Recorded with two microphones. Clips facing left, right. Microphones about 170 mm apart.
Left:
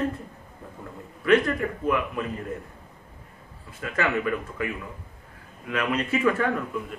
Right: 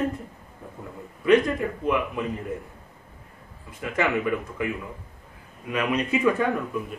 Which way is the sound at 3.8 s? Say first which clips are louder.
Right 1 dB; 20° right (ahead or behind).